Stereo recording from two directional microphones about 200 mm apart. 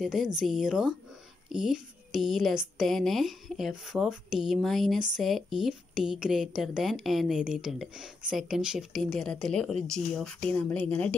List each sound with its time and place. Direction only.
0.0 s a woman's voice: centre (ahead or behind)